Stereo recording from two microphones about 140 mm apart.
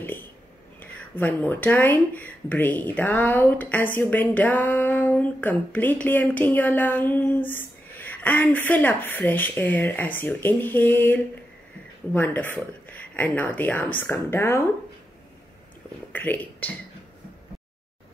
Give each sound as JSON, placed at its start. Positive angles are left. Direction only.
{"t": 0.7, "sound": "speech", "side_deg": 10}
{"t": 16.1, "sound": "speech", "side_deg": 10}